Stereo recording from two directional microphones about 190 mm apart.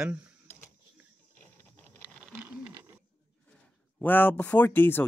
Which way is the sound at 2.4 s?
10° right (ahead or behind).